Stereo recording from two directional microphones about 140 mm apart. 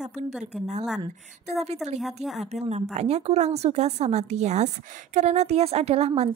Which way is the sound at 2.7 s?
50° right (ahead or behind).